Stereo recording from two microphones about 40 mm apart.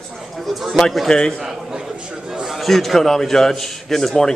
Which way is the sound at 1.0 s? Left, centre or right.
Centre.